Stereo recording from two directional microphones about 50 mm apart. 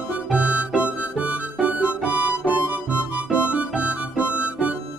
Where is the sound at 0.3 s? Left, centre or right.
Right.